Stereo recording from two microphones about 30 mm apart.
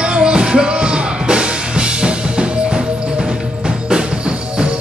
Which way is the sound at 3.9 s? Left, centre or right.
Right.